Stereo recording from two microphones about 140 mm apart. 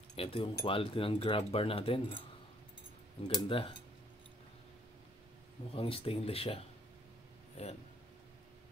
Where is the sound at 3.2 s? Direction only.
40° left (ahead or behind).